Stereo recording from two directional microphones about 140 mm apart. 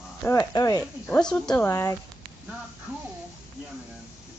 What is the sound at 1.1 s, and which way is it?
Speech, 5° left (ahead or behind).